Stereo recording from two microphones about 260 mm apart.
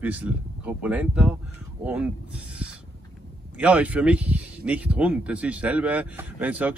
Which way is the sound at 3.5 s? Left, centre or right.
Centre.